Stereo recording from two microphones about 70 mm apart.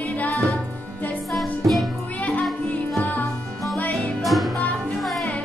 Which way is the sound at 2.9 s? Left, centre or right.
Left.